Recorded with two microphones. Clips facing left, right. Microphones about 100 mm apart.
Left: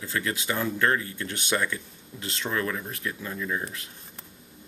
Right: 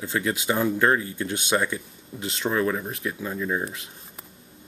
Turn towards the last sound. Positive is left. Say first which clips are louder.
# right 4 dB
turn(degrees=-20)  # may be behind; listen again after turning